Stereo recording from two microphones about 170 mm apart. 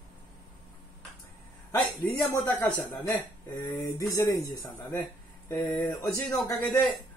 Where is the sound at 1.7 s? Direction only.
20° left (ahead or behind).